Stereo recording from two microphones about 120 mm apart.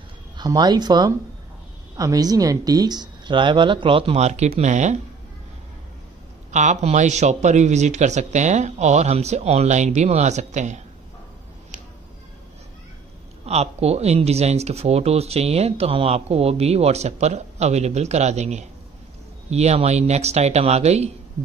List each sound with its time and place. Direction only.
0.4 s speech: 35° right (ahead or behind)
4.2 s speech: 70° right (ahead or behind)
6.5 s speech: 80° right
13.5 s speech: 60° right (ahead or behind)